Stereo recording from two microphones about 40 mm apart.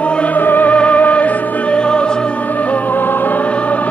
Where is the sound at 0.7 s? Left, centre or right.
Left.